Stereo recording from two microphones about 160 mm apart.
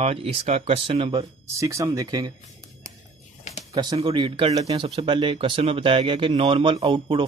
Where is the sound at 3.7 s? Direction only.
25° right (ahead or behind).